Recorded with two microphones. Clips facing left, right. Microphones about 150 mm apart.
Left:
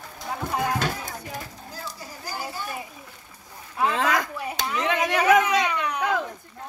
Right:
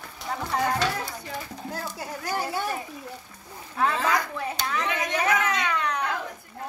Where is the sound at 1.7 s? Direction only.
65° right (ahead or behind).